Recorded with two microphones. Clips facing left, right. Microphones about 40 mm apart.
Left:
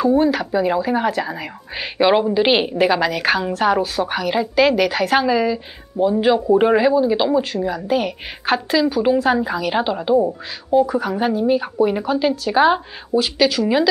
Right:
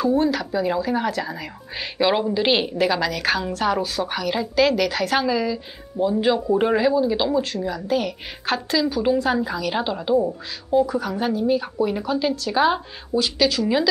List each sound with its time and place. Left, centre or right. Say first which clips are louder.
0.0 s speech: left 4 dB; centre